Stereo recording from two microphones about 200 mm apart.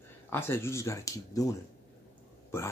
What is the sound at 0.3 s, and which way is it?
Speech, 10° left (ahead or behind).